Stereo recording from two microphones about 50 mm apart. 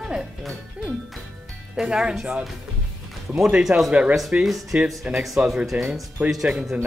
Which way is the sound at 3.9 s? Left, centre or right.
Right.